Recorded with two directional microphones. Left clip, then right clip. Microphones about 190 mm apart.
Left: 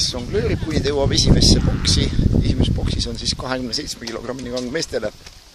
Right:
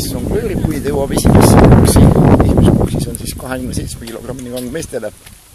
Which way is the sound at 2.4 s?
Centre (ahead or behind).